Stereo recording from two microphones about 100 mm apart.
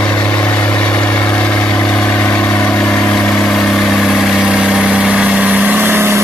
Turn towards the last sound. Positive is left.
turn(degrees=-25)  # may be behind; listen again after turning